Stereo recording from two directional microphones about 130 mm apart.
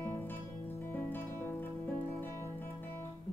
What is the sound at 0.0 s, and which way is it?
Music, 20° left (ahead or behind).